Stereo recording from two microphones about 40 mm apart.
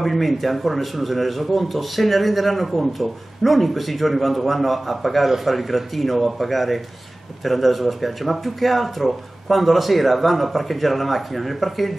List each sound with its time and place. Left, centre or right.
0.0 s speech: centre